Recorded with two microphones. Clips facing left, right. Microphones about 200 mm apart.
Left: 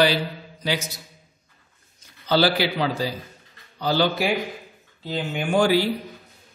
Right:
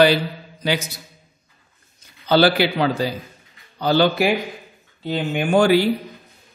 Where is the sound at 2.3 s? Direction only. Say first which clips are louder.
Right 4 dB; 60° right (ahead or behind).